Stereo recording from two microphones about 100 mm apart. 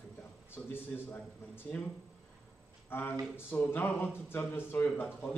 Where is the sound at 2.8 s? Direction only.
20° left (ahead or behind).